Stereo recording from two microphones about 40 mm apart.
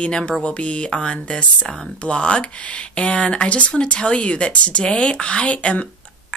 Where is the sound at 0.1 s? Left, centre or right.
Left.